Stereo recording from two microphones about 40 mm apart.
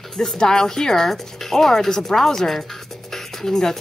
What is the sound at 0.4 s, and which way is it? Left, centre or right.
Speech, centre.